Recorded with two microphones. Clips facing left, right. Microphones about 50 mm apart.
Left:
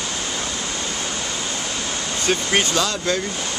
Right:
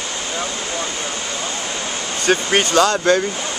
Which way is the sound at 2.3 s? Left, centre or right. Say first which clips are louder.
Right 5 dB; centre.